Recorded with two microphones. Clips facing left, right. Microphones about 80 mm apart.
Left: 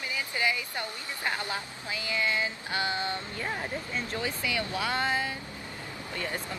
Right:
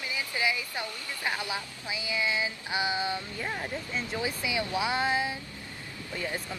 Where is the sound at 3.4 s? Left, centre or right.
Centre.